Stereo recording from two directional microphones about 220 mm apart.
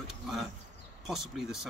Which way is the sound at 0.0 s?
Centre (ahead or behind).